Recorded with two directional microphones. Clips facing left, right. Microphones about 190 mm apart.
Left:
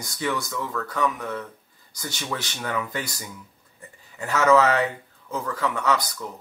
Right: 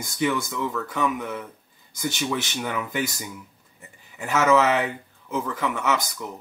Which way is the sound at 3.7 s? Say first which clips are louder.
Left 2 dB; 5° right (ahead or behind).